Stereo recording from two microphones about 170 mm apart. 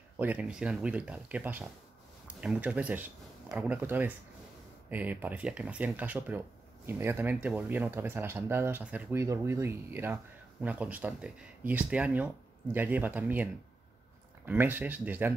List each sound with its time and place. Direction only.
0.2 s speech: 10° right (ahead or behind)